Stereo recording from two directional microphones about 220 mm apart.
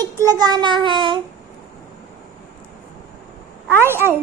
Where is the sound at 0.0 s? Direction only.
15° right (ahead or behind).